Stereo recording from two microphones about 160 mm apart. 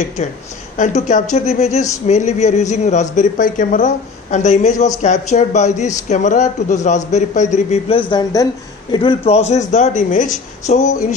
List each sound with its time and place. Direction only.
0.2 s a man's voice: 45° left (ahead or behind)
8.1 s speech: 25° left (ahead or behind)
8.9 s a man's voice: 35° left (ahead or behind)